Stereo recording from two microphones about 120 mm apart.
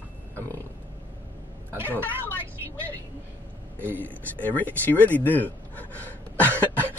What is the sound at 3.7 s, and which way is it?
Speech, 15° right (ahead or behind).